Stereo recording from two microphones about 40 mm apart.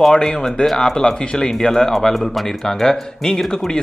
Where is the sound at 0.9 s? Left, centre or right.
Centre.